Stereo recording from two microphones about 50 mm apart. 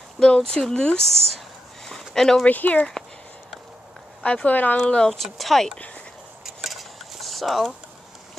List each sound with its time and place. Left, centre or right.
0.4 s speech: centre
1.0 s speech: centre
1.9 s a sound: centre
2.4 s speech: left
4.2 s speech: left
4.7 s speech: centre
5.1 s speech: centre
6.4 s cutlery: centre